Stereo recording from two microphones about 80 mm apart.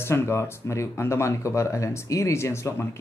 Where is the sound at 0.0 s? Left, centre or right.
Left.